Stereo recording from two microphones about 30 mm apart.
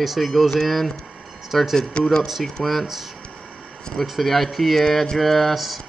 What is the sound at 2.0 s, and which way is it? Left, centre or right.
Speech, left.